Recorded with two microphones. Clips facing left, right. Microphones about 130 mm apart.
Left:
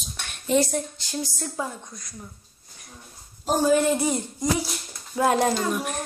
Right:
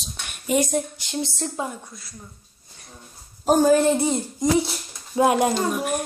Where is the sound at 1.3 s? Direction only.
20° right (ahead or behind).